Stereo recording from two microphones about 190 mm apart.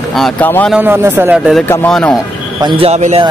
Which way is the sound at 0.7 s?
10° right (ahead or behind).